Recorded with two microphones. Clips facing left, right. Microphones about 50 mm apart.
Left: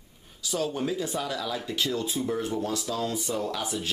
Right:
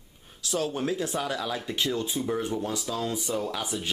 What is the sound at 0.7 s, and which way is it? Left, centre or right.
Speech, centre.